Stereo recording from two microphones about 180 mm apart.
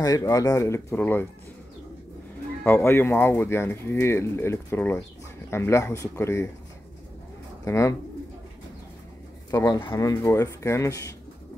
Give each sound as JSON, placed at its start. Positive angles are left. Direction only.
{"t": 0.0, "sound": "speech", "side_deg": 20}
{"t": 2.6, "sound": "speech", "side_deg": 15}
{"t": 7.6, "sound": "speech", "side_deg": 15}
{"t": 9.5, "sound": "speech", "side_deg": 20}